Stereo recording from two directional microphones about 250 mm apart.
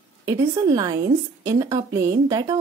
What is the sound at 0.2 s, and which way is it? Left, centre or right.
A woman's voice, centre.